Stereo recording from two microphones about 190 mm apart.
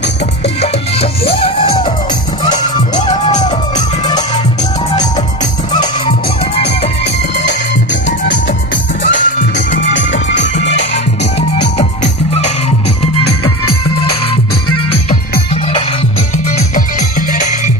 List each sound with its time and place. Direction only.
0.6 s music: 30° left (ahead or behind)
2.9 s music: 40° left (ahead or behind)
3.7 s music: 20° left (ahead or behind)
5.7 s music: 20° left (ahead or behind)
7.3 s music: 70° left (ahead or behind)
10.3 s music: 70° left (ahead or behind)
11.8 s music: 35° left (ahead or behind)
16.4 s music: 40° left (ahead or behind)